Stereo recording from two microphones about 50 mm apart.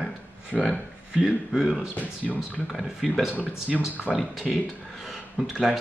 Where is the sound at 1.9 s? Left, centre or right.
Left.